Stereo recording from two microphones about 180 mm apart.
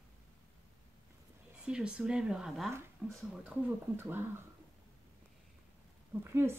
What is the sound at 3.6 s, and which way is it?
Speech, 10° right (ahead or behind).